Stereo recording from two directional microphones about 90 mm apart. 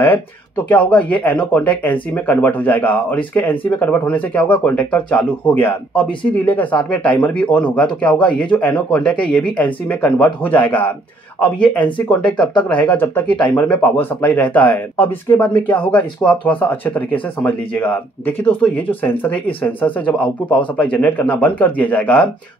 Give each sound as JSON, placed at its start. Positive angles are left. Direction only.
{"t": 0.7, "sound": "speech", "side_deg": 15}
{"t": 12.1, "sound": "speech", "side_deg": 15}